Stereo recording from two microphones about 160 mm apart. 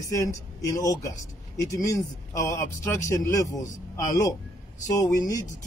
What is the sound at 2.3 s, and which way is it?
A man's voice, 20° left (ahead or behind).